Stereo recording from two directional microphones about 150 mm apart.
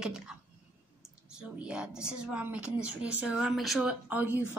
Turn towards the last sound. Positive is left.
turn(degrees=-10)  # may be behind; listen again after turning